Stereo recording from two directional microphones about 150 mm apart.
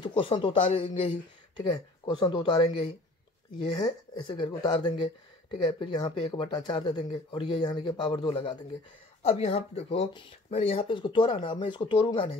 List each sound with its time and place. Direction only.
0.0 s speech: 35° left (ahead or behind)